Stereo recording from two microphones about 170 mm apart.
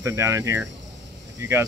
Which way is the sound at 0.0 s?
15° right (ahead or behind).